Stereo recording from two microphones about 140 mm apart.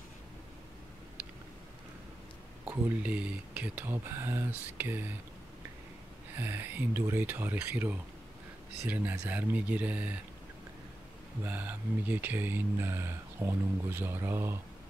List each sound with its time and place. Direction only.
2.6 s speech: 10° right (ahead or behind)
6.3 s speech: 15° right (ahead or behind)
11.4 s speech: 15° right (ahead or behind)